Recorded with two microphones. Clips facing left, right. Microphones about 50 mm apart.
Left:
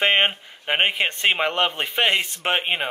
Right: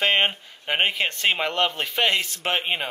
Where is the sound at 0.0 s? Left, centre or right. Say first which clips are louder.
Left 2 dB; left.